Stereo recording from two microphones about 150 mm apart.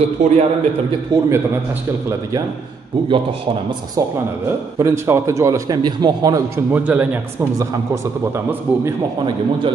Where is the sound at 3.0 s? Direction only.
35° right (ahead or behind).